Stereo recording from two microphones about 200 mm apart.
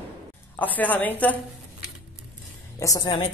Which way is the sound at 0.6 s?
10° left (ahead or behind).